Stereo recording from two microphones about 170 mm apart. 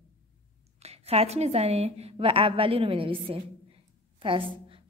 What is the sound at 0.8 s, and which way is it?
A woman's voice, 35° right (ahead or behind).